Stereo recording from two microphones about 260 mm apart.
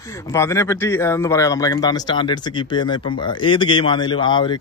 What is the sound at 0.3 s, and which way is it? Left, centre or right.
A man's voice, centre.